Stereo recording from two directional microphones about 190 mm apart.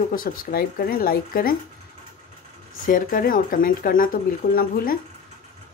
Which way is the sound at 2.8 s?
45° left (ahead or behind).